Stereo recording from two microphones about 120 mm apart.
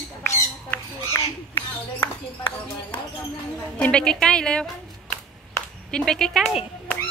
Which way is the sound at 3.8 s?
10° left (ahead or behind).